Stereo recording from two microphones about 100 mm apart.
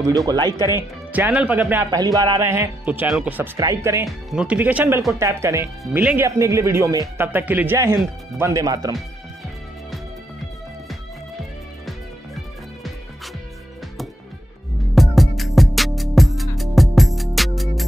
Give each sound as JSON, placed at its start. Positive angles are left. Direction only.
{"t": 0.0, "sound": "speech", "side_deg": -35}
{"t": 0.5, "sound": "speech", "side_deg": 40}
{"t": 0.7, "sound": "speech", "side_deg": -15}
{"t": 1.9, "sound": "speech", "side_deg": -40}
{"t": 2.8, "sound": "speech", "side_deg": -15}
{"t": 3.5, "sound": "speech", "side_deg": -30}
{"t": 4.3, "sound": "speech", "side_deg": -10}
{"t": 7.2, "sound": "speech", "side_deg": -15}
{"t": 7.8, "sound": "speech", "side_deg": -30}
{"t": 15.0, "sound": "music", "side_deg": 0}